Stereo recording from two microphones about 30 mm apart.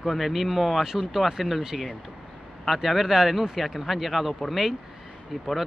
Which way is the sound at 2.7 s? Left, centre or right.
Centre.